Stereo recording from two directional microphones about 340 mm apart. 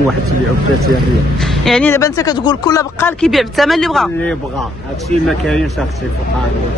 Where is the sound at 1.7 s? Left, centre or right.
Centre.